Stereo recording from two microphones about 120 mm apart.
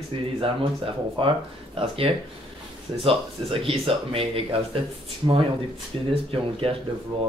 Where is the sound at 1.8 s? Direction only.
50° right (ahead or behind).